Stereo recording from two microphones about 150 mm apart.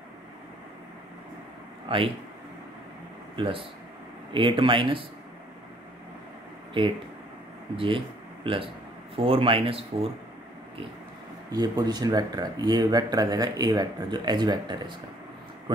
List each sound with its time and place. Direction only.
1.9 s speech: 35° right (ahead or behind)
3.3 s speech: 35° right (ahead or behind)
7.7 s speech: 35° right (ahead or behind)
11.5 s speech: 25° right (ahead or behind)